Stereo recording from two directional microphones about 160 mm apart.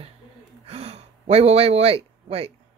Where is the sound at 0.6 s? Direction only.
40° right (ahead or behind).